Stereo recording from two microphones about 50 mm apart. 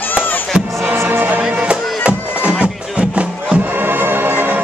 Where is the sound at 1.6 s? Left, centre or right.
Right.